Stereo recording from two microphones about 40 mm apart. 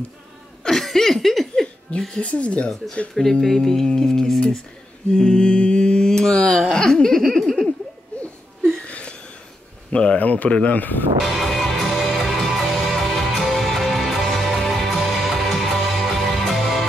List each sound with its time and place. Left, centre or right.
0.7 s speech: centre
1.9 s speech: left
3.2 s speech: centre
5.1 s mantra: left
6.5 s speech: centre
8.8 s a sound: left
9.9 s speech: left
10.8 s speech: left
11.2 s music: centre